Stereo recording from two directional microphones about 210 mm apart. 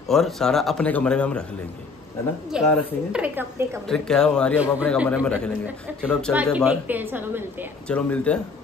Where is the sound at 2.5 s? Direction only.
5° right (ahead or behind).